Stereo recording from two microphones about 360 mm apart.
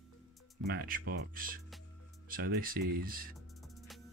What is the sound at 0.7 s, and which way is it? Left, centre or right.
Speech, right.